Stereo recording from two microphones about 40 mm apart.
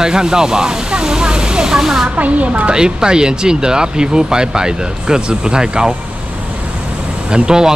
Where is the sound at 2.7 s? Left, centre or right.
Centre.